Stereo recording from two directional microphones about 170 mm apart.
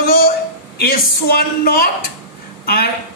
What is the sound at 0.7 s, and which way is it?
A man's voice, 65° left (ahead or behind).